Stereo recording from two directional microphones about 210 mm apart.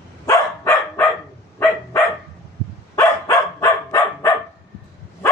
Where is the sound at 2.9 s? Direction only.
15° left (ahead or behind).